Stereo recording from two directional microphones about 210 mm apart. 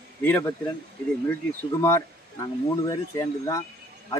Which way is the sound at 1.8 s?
15° left (ahead or behind).